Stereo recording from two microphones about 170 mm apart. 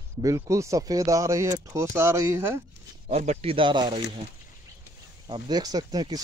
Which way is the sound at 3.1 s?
40° right (ahead or behind).